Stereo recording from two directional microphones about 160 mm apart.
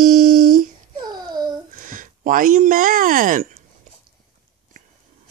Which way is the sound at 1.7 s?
55° right (ahead or behind).